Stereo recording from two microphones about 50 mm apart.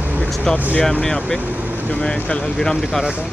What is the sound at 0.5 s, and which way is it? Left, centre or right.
Speech, centre.